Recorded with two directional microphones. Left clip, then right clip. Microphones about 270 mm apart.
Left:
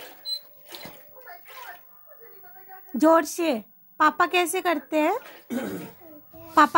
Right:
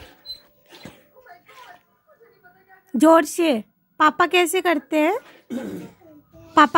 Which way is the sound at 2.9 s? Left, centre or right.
Centre.